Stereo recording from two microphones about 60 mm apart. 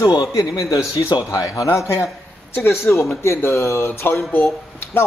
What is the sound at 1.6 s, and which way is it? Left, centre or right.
Speech, left.